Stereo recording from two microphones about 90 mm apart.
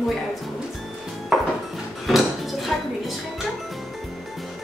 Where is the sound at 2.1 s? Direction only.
Centre (ahead or behind).